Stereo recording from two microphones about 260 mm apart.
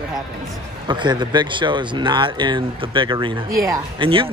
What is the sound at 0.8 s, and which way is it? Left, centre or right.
A man's voice, centre.